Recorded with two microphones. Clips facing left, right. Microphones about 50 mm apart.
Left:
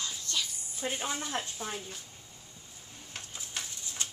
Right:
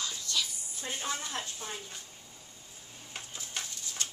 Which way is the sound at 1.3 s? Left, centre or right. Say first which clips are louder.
Left 3 dB; centre.